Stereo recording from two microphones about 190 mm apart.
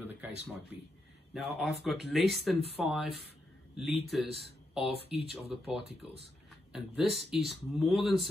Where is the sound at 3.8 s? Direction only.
Centre (ahead or behind).